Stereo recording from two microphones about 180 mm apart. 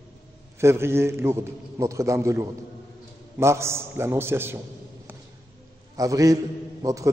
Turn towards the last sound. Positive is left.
turn(degrees=-20)  # may be behind; listen again after turning